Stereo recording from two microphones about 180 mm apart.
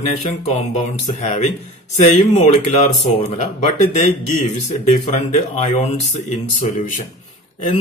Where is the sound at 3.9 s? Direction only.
40° left (ahead or behind).